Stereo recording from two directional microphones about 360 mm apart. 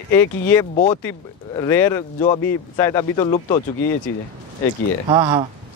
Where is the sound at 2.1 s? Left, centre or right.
Centre.